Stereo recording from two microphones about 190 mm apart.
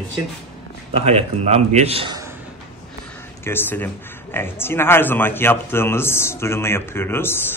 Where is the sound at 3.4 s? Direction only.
10° left (ahead or behind).